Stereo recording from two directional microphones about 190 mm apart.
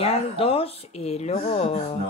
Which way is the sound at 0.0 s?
30° left (ahead or behind).